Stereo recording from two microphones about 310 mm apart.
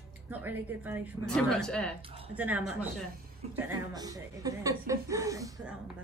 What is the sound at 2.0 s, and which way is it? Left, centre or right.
Speech, centre.